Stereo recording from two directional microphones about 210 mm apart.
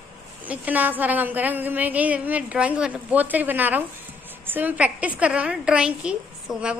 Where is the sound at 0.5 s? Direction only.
10° right (ahead or behind).